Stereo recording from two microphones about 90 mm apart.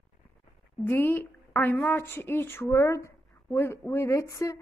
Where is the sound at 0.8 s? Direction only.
25° left (ahead or behind).